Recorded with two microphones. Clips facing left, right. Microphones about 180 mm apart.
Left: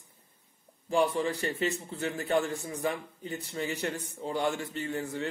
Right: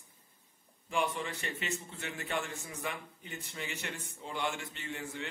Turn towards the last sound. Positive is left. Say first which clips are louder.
# left 8 dB
turn(degrees=40)  # may be behind; listen again after turning